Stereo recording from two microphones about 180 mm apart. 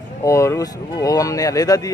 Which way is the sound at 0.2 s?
15° left (ahead or behind).